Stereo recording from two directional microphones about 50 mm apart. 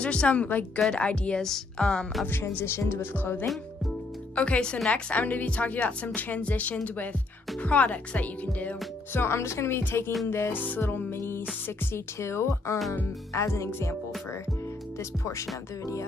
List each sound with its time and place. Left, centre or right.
0.0 s a woman's voice: left
1.4 s speech: centre
2.6 s music: left
4.4 s a woman's voice: left
5.1 s a woman's voice: left
9.1 s speech: left
10.5 s music: left
12.2 s speech: left
13.5 s speech: left
15.0 s speech: left